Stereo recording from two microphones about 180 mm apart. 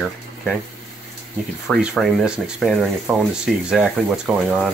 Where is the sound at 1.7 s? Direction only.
5° right (ahead or behind).